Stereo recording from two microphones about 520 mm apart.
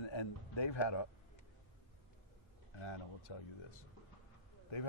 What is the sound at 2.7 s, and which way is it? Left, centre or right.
A man's voice, left.